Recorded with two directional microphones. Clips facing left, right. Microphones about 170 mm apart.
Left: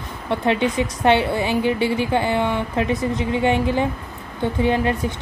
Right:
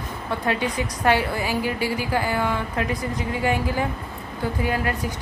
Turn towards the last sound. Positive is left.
turn(degrees=25)  # may be behind; listen again after turning